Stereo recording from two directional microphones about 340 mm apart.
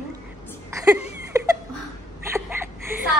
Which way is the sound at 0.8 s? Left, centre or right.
Centre.